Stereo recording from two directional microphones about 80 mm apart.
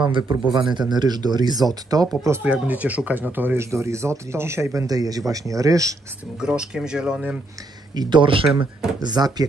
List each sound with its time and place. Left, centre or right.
0.5 s speech: right
2.4 s speech: centre
3.7 s speech: right
4.8 s speech: right
6.4 s speech: centre
7.9 s speech: right
8.5 s speech: right